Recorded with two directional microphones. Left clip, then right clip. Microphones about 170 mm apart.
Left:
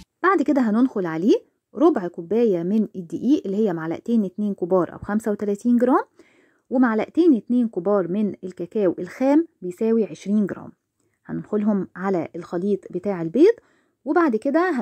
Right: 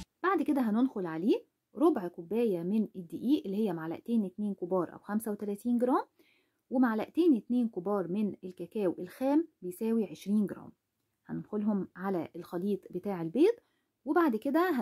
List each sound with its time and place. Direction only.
0.2 s a woman's voice: 30° left (ahead or behind)
9.7 s a woman's voice: 20° left (ahead or behind)